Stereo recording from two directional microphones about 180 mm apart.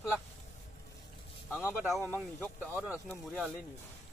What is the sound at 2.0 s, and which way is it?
Speech, 10° left (ahead or behind).